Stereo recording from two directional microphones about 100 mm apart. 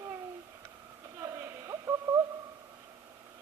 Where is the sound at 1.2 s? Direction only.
30° right (ahead or behind).